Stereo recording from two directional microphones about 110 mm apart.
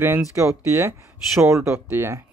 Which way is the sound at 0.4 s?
25° right (ahead or behind).